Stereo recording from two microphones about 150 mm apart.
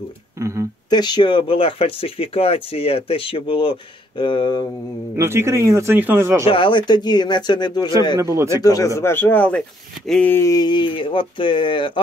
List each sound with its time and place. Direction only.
0.4 s speech: 20° right (ahead or behind)
0.8 s speech: 30° left (ahead or behind)
5.1 s speech: 20° right (ahead or behind)
6.5 s speech: 35° left (ahead or behind)
8.2 s speech: 20° right (ahead or behind)
8.6 s a man's voice: 20° left (ahead or behind)
10.0 s a sound: 5° left (ahead or behind)
10.3 s speech: 20° left (ahead or behind)